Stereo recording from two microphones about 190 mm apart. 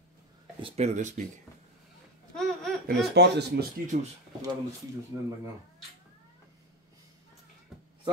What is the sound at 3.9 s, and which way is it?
Speech, 45° right (ahead or behind).